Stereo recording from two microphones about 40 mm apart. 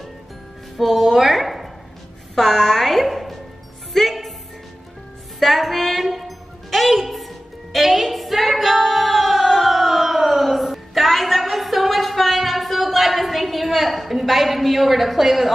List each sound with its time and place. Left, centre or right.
0.7 s a woman's voice: centre
3.9 s music: centre
5.4 s music: centre
7.7 s singing: centre